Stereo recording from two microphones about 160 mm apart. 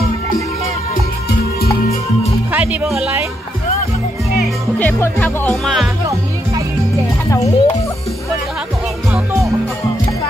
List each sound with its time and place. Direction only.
2.5 s speech: 10° right (ahead or behind)
4.7 s speech: 10° left (ahead or behind)
7.2 s a child's voice: 20° left (ahead or behind)
9.1 s music: 15° right (ahead or behind)